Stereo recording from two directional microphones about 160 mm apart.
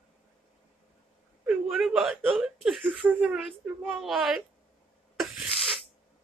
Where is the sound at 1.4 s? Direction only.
10° right (ahead or behind).